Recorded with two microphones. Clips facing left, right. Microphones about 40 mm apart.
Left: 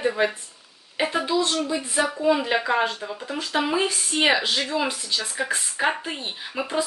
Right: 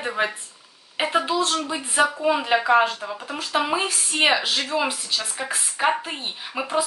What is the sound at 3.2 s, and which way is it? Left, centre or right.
Speech, right.